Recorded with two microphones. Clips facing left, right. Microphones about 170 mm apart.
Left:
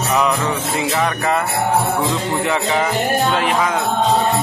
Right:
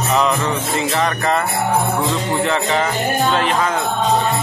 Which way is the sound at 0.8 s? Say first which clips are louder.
Even; 5° left (ahead or behind).